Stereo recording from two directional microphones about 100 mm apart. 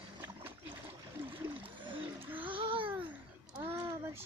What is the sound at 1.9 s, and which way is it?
Splash, 60° right (ahead or behind).